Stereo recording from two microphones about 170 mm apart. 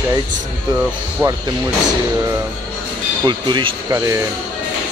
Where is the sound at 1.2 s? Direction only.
15° right (ahead or behind).